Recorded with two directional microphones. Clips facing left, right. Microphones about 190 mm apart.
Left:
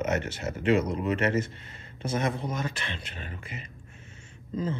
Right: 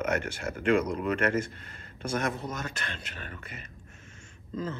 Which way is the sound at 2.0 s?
25° left (ahead or behind).